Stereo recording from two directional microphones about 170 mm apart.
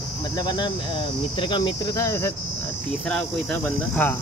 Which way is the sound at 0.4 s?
25° left (ahead or behind).